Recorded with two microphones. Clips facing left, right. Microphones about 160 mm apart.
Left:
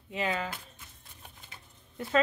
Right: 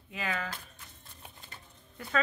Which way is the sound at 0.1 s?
25° left (ahead or behind).